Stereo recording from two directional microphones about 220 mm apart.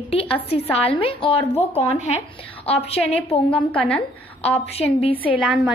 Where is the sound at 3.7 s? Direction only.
5° left (ahead or behind).